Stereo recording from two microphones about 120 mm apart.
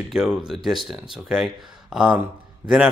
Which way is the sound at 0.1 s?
5° right (ahead or behind).